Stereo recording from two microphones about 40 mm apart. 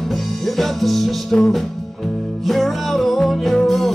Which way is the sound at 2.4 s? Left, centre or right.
Centre.